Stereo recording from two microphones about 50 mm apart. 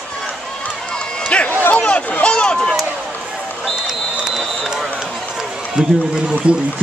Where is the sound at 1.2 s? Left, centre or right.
Left.